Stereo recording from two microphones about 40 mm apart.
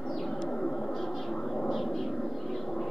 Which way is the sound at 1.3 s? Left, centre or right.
Left.